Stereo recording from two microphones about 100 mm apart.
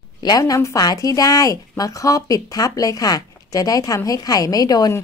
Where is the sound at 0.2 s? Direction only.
40° left (ahead or behind).